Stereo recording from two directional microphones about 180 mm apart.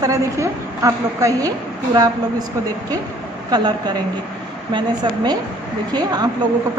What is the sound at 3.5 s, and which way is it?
A woman's voice, 20° right (ahead or behind).